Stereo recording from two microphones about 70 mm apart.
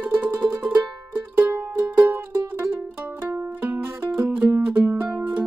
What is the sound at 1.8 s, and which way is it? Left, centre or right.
Music, right.